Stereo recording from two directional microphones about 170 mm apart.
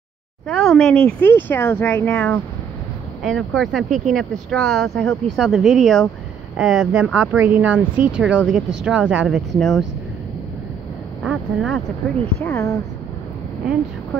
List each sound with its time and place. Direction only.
0.5 s speech: 5° left (ahead or behind)
11.2 s speech: 5° left (ahead or behind)
12.4 s speech: 20° left (ahead or behind)